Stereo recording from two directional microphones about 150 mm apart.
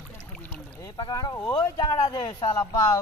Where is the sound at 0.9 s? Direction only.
25° left (ahead or behind).